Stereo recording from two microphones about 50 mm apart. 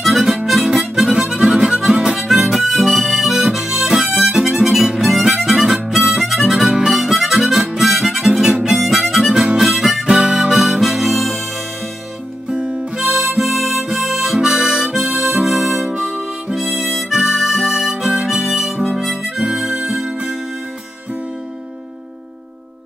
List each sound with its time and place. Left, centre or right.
0.0 s harmonica: centre
0.7 s harmonica: centre
2.1 s harmonica: centre
9.7 s harmonica: centre
10.0 s harmonica: centre
12.4 s music: right
13.0 s harmonica: centre